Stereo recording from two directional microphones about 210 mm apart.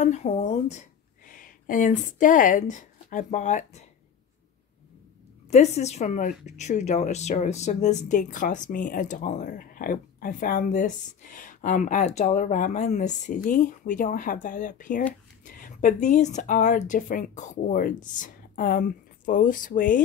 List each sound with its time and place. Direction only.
0.0 s speech: 30° left (ahead or behind)
5.8 s speech: 30° left (ahead or behind)